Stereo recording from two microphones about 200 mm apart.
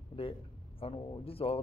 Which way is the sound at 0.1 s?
30° left (ahead or behind).